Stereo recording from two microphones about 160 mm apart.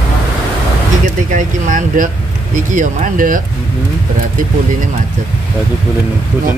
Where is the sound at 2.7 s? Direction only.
55° right (ahead or behind).